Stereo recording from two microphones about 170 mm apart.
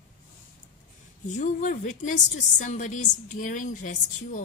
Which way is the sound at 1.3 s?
45° left (ahead or behind).